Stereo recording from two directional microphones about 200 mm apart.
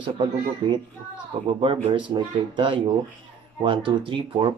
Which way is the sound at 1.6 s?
25° right (ahead or behind).